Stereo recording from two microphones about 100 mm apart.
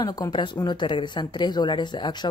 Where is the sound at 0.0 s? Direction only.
40° left (ahead or behind).